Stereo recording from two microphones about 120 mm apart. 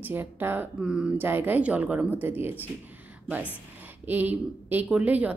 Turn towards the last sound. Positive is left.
turn(degrees=-10)  # may be behind; listen again after turning